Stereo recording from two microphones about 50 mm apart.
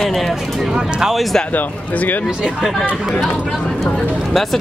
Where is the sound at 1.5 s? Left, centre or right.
Left.